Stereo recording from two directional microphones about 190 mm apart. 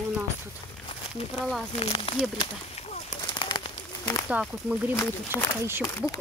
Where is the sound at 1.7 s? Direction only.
30° left (ahead or behind).